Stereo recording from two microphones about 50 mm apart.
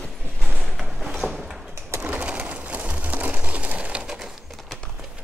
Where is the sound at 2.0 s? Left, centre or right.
Right.